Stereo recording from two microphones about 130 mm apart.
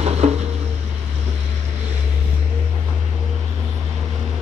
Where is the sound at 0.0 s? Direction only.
55° right (ahead or behind).